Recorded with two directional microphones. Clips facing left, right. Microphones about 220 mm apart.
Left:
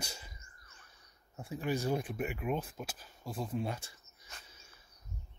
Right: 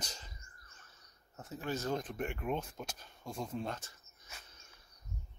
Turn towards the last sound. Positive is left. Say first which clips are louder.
# left 1 dB
turn(degrees=10)  # may be behind; listen again after turning